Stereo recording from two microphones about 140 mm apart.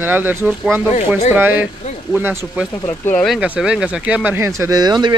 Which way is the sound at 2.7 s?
20° left (ahead or behind).